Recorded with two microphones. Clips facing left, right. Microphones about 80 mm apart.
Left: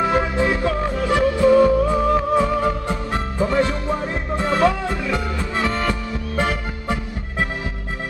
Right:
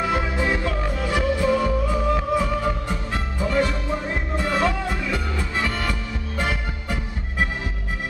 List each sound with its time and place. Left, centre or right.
0.0 s music: left